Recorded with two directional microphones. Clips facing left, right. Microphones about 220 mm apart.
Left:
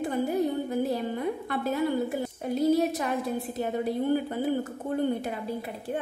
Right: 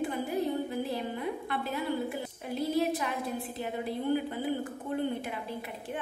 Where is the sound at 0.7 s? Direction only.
45° left (ahead or behind).